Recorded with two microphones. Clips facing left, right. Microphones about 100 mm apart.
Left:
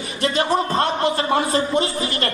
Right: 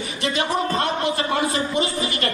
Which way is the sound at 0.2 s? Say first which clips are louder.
Left 3 dB; 35° left (ahead or behind).